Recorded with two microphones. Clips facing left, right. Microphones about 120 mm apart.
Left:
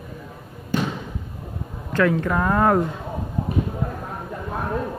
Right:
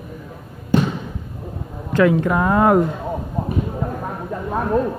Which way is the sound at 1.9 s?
15° right (ahead or behind).